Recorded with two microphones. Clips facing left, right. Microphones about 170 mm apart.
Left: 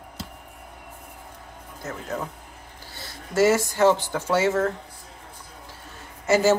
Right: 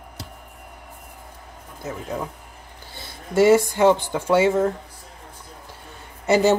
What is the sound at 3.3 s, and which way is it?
Speech, 15° right (ahead or behind).